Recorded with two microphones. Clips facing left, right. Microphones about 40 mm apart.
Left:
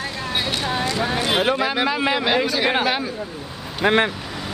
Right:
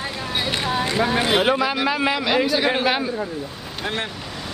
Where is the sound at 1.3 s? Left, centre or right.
Centre.